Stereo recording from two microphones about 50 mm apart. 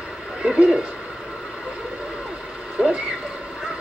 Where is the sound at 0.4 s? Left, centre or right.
Centre.